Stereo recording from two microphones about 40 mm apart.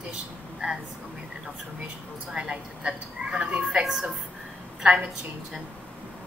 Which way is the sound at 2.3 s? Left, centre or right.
Right.